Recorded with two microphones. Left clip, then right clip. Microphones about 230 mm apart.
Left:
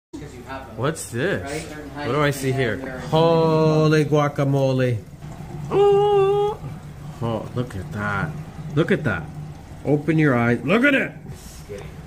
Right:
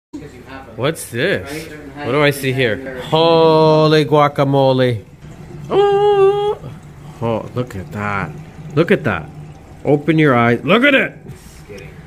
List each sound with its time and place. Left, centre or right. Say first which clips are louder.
1.1 s speech: right 6 dB; centre
5.7 s a sound: right 4 dB; centre
7.2 s speech: right 7 dB; centre